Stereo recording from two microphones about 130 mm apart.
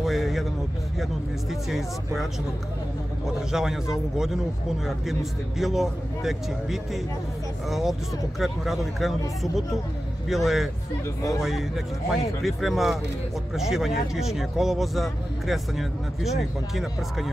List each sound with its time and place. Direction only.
0.0 s speech: centre (ahead or behind)
1.5 s speech: centre (ahead or behind)
3.3 s speech: 5° right (ahead or behind)
5.6 s speech: centre (ahead or behind)
10.2 s speech: centre (ahead or behind)